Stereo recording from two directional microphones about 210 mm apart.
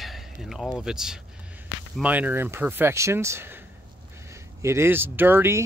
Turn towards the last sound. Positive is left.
turn(degrees=-10)  # may be behind; listen again after turning